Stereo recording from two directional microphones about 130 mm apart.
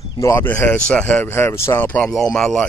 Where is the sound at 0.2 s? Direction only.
20° left (ahead or behind).